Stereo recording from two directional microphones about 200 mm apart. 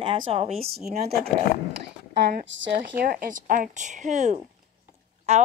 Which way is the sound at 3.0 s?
45° right (ahead or behind).